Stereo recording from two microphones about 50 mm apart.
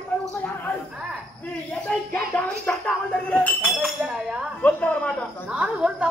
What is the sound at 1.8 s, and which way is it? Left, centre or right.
Speech, centre.